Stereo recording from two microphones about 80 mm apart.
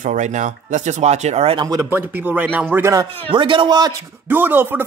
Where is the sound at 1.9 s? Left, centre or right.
Right.